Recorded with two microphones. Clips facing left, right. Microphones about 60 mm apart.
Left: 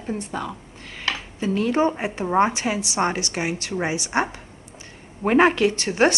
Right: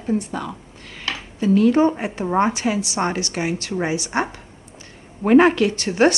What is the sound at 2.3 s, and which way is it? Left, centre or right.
A woman's voice, left.